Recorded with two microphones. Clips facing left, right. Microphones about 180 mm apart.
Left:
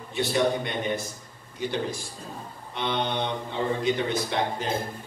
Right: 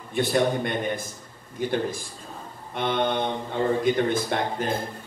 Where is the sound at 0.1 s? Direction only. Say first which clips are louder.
Right 2 dB; 50° right (ahead or behind).